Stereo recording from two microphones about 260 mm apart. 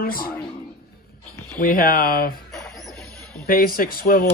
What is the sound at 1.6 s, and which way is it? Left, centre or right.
Speech, left.